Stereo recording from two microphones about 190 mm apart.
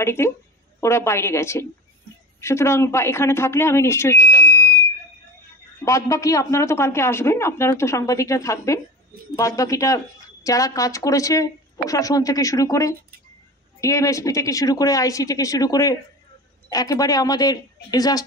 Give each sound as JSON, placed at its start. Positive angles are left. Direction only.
{"t": 0.0, "sound": "speech", "side_deg": 15}
{"t": 5.9, "sound": "speech", "side_deg": 15}